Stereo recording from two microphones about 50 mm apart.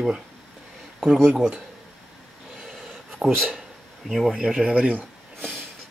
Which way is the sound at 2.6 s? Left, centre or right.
Centre.